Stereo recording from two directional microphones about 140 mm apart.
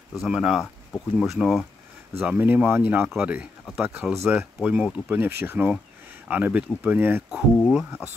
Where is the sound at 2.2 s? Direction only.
15° right (ahead or behind).